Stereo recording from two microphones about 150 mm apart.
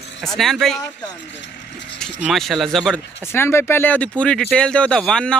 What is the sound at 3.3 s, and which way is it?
Speech, 15° left (ahead or behind).